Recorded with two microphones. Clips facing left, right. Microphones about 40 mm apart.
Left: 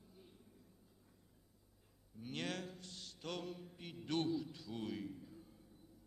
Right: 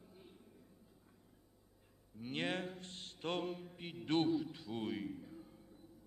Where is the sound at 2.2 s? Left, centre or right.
Right.